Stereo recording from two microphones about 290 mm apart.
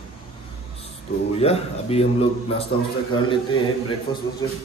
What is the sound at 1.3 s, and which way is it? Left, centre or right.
Speech, left.